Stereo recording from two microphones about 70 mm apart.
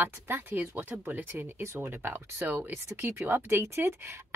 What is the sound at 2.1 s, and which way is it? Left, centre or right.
Speech, right.